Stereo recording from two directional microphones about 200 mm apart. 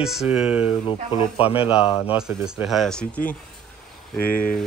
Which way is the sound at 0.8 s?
25° left (ahead or behind).